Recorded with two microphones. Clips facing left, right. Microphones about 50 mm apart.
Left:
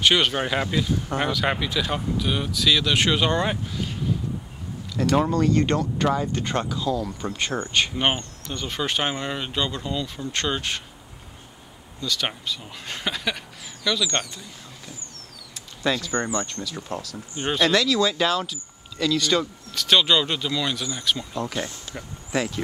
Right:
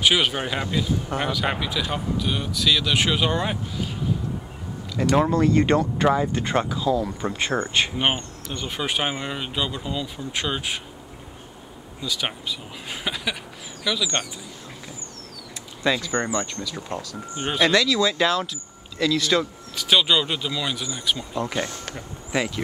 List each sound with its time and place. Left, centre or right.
0.0 s speech: centre
5.0 s speech: centre
12.0 s speech: centre
15.8 s speech: centre